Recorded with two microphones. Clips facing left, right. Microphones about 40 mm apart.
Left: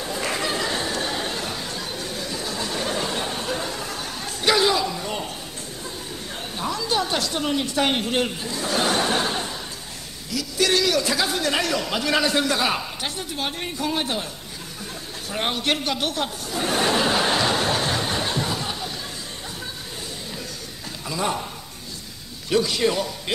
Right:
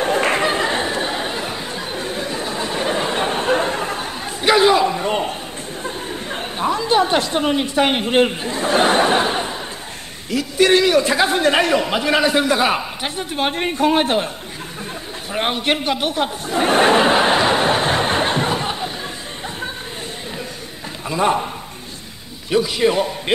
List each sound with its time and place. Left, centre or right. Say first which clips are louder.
0.0 s chatter: right 9 dB; right
5.9 s a sound: right 9 dB; right
10.3 s a man's voice: right 7 dB; right
15.3 s a man's voice: right 5 dB; right
16.4 s chuckle: right 9 dB; right
21.1 s a man's voice: right 8 dB; right
22.5 s a man's voice: right 4 dB; centre
22.9 s a man's voice: right 7 dB; right